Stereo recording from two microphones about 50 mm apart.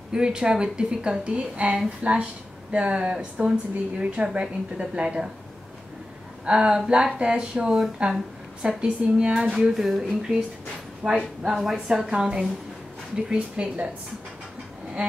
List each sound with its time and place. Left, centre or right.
0.1 s a woman's voice: centre
6.4 s a woman's voice: right
8.6 s a woman's voice: right